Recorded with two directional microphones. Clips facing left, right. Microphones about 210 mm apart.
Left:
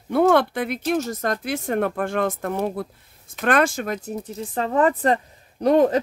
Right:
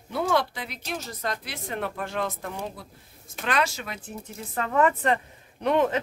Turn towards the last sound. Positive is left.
turn(degrees=40)  # may be behind; listen again after turning